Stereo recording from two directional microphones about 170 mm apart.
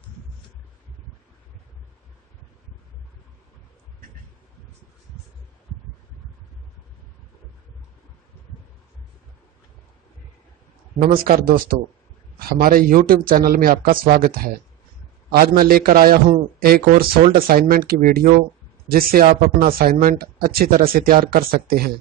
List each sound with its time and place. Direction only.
11.4 s speech: 55° right (ahead or behind)